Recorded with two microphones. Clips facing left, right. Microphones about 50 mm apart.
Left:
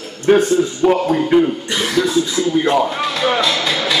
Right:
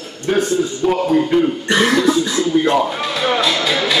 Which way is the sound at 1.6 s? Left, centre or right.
Right.